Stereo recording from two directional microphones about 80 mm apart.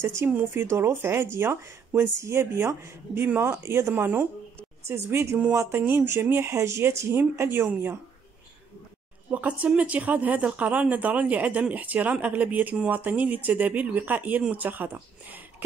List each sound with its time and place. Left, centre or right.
0.0 s speech: right
0.3 s speech: right
0.7 s a woman's voice: right
9.3 s speech: centre